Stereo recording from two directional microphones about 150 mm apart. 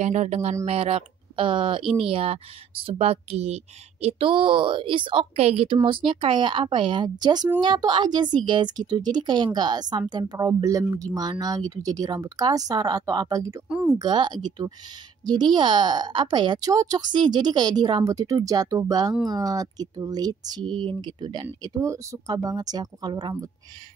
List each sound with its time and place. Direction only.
0.0 s speech: 50° right (ahead or behind); by 13.6 s 25° right (ahead or behind)
13.7 s speech: 5° right (ahead or behind)
13.9 s speech: 30° right (ahead or behind)
21.6 s speech: 20° right (ahead or behind)